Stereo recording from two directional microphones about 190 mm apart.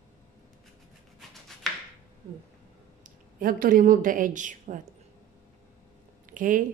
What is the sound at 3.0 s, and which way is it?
A woman's voice, 45° right (ahead or behind).